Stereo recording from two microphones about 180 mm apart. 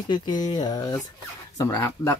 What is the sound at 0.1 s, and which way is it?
Speech, 25° left (ahead or behind).